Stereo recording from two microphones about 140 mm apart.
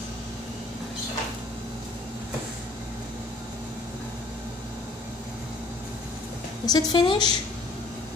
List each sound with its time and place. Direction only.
6.6 s a woman's voice: 30° left (ahead or behind)